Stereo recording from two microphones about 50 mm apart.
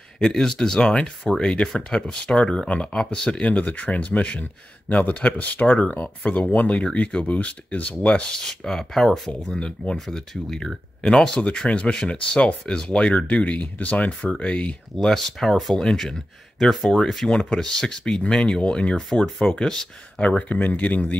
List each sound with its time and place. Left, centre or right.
0.2 s speech: centre; by 6.8 s left
6.8 s speech: centre
9.9 s speech: centre; by 14.8 s left
15.0 s speech: centre; by 21.2 s left